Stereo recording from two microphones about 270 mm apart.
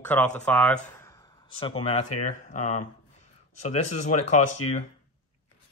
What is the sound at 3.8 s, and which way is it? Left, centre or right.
Speech, left.